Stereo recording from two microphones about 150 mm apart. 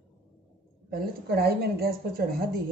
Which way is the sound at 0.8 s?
90° right.